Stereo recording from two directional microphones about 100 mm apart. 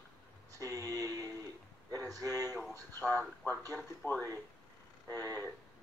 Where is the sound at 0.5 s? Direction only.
35° right (ahead or behind).